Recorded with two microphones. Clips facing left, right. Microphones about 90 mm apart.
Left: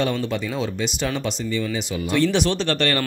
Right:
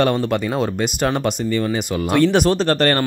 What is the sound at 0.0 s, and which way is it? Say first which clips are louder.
Speech: right 5 dB; 55° right (ahead or behind).